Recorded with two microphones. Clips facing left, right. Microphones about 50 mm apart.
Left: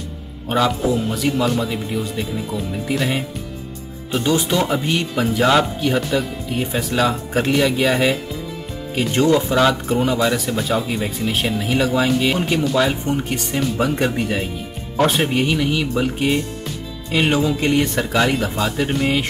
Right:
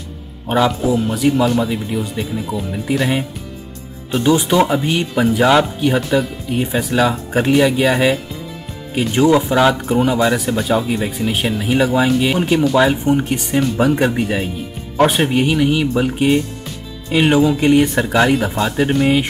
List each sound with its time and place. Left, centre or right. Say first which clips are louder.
0.7 s speech: right 2 dB; centre
12.7 s speech: right 5 dB; centre